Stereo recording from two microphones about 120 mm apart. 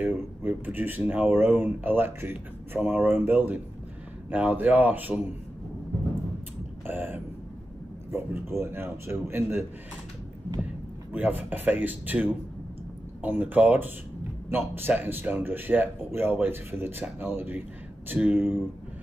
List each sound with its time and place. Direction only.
0.0 s speech: 15° right (ahead or behind)
6.9 s a man's voice: 15° right (ahead or behind)
11.1 s speech: 15° right (ahead or behind)